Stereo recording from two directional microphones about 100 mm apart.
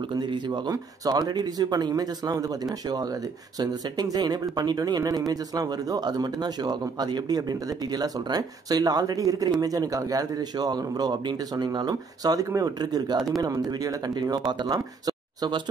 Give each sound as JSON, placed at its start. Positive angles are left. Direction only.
{"t": 0.1, "sound": "speech", "side_deg": -50}